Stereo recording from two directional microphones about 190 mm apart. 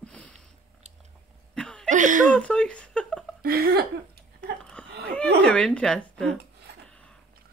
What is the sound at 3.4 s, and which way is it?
Speech, 50° right (ahead or behind).